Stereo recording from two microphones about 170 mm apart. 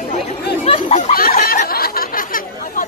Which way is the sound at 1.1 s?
60° left (ahead or behind).